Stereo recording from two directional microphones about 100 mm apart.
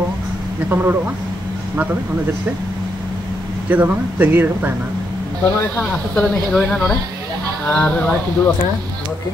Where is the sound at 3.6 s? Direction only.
15° right (ahead or behind).